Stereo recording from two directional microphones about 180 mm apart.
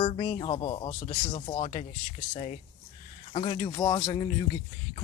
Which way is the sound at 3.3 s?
30° left (ahead or behind).